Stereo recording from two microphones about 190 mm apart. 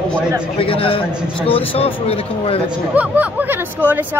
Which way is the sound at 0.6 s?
30° left (ahead or behind).